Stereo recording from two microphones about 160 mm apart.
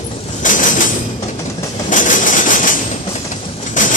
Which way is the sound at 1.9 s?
55° left (ahead or behind).